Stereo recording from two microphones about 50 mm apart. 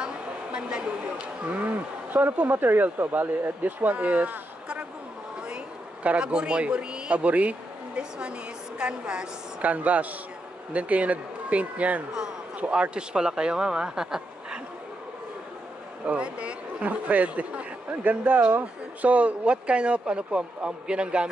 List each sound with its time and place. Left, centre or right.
0.0 s a sound: right
2.1 s speech: right
6.0 s speech: centre
9.6 s speech: right; by 14.6 s centre
16.1 s speech: right